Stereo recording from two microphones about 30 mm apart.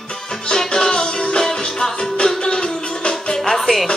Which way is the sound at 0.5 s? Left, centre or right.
Centre.